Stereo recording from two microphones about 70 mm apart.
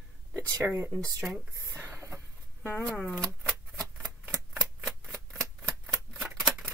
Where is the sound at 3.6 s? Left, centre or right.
Centre.